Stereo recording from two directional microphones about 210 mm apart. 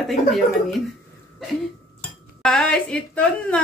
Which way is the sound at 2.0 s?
5° left (ahead or behind).